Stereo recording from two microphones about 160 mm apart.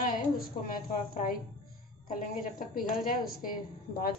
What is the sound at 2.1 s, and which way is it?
A woman's voice, 60° left (ahead or behind).